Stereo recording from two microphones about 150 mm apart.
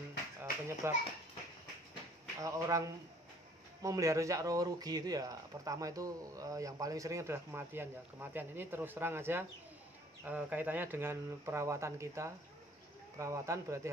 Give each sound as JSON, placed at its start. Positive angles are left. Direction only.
{"t": 0.4, "sound": "music", "side_deg": -15}
{"t": 2.4, "sound": "speech", "side_deg": -20}